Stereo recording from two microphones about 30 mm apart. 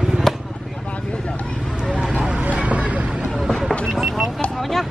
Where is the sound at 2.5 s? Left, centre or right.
Right.